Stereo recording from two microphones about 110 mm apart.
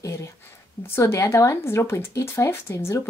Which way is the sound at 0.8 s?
25° left (ahead or behind).